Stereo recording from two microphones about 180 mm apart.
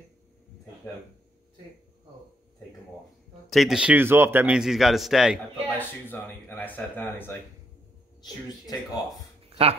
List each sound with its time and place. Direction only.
3.4 s speech: centre (ahead or behind)
5.8 s speech: 10° left (ahead or behind)
8.2 s speech: 20° left (ahead or behind)
9.5 s speech: 35° right (ahead or behind)